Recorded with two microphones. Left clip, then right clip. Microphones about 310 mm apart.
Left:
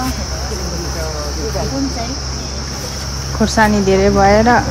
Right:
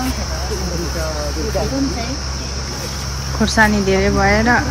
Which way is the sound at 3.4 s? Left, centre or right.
Centre.